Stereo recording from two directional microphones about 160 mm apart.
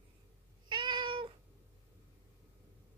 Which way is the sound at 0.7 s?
30° right (ahead or behind).